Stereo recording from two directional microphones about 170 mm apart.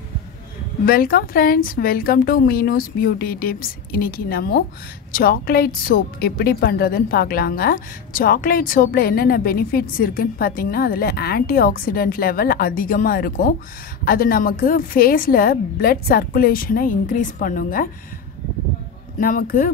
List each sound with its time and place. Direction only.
0.8 s a woman's voice: 60° left (ahead or behind)
19.1 s a woman's voice: 55° left (ahead or behind)